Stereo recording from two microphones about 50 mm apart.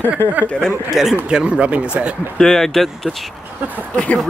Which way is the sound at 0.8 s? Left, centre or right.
Centre.